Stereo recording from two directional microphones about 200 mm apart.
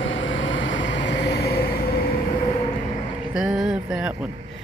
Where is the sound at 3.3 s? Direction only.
5° right (ahead or behind).